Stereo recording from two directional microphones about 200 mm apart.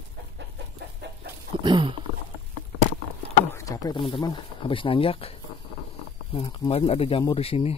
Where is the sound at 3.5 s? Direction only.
15° left (ahead or behind).